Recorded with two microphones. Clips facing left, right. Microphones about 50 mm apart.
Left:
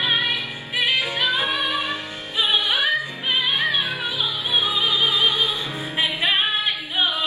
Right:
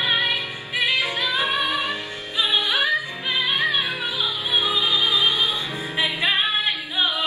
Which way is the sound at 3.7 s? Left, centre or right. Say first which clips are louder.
Even; right.